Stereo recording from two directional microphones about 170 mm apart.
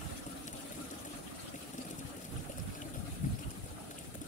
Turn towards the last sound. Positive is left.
turn(degrees=50)  # may be behind; listen again after turning